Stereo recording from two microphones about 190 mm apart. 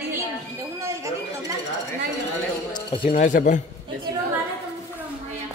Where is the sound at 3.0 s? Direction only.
40° left (ahead or behind).